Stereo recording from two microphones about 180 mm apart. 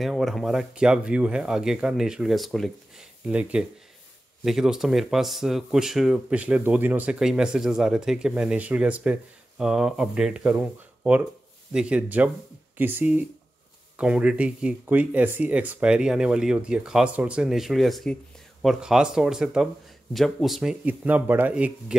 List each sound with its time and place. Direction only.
0.0 s speech: centre (ahead or behind)